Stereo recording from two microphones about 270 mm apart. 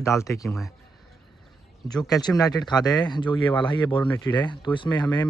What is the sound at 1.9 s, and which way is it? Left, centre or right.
Speech, centre.